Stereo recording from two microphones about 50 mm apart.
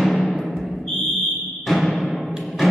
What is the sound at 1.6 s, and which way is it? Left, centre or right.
Music, centre.